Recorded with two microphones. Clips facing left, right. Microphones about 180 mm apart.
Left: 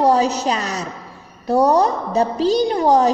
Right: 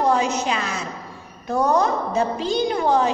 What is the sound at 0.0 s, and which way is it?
A woman's voice, 35° left (ahead or behind).